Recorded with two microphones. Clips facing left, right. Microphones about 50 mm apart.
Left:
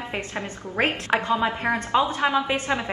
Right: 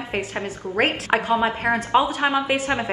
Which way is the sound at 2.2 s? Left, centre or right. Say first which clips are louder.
Right 1 dB; right.